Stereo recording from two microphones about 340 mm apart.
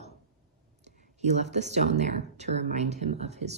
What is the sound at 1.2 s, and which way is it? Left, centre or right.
Speech, centre.